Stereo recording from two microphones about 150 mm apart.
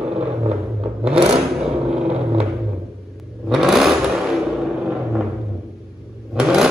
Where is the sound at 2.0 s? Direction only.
40° right (ahead or behind).